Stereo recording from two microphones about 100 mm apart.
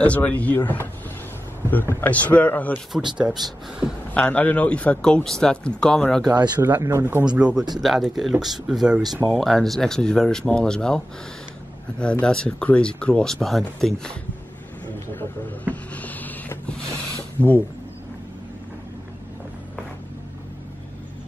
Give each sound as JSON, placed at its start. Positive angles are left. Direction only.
{"t": 0.0, "sound": "speech", "side_deg": 15}
{"t": 1.7, "sound": "speech", "side_deg": 20}
{"t": 2.9, "sound": "speech", "side_deg": -10}
{"t": 4.1, "sound": "speech", "side_deg": 15}
{"t": 6.6, "sound": "speech", "side_deg": -25}
{"t": 7.3, "sound": "speech", "side_deg": -10}
{"t": 12.0, "sound": "speech", "side_deg": 10}
{"t": 15.1, "sound": "cupboard open or close", "side_deg": 15}
{"t": 17.4, "sound": "speech", "side_deg": 15}